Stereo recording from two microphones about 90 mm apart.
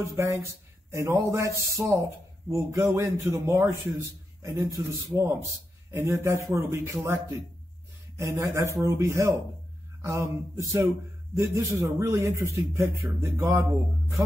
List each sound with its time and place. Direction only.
0.0 s a man's voice: 35° right (ahead or behind)